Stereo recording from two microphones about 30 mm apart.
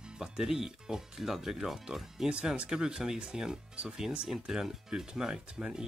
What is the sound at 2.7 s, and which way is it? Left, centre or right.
Speech, right.